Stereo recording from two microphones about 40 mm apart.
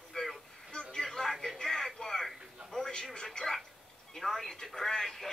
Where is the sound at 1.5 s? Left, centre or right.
Centre.